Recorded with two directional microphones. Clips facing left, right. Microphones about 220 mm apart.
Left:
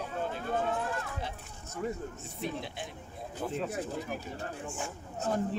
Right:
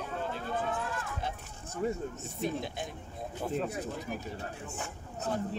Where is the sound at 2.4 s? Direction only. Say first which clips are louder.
Right 3 dB; 45° right (ahead or behind).